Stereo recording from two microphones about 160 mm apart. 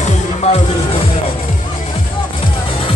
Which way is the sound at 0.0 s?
45° left (ahead or behind).